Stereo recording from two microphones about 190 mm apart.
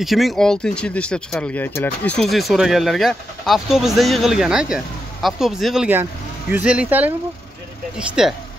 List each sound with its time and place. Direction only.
0.0 s speech: centre (ahead or behind)